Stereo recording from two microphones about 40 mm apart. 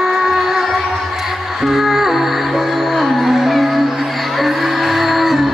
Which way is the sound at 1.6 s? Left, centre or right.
Centre.